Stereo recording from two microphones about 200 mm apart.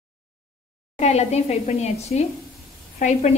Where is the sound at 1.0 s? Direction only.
35° left (ahead or behind).